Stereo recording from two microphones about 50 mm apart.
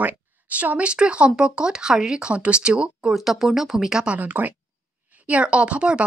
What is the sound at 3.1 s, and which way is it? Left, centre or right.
Speech, centre.